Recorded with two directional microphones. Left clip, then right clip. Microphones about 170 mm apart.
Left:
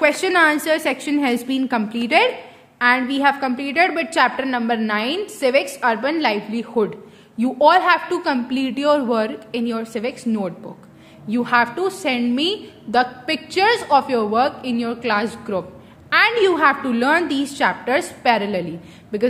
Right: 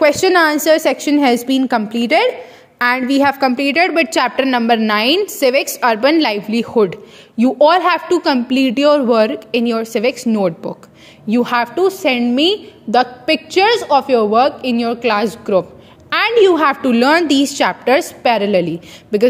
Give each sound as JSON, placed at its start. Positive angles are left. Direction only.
{"t": 0.0, "sound": "a woman's voice", "side_deg": -30}
{"t": 2.8, "sound": "a woman's voice", "side_deg": -45}
{"t": 16.1, "sound": "a sound", "side_deg": -40}
{"t": 16.3, "sound": "a woman's voice", "side_deg": -30}
{"t": 16.6, "sound": "a woman's voice", "side_deg": -45}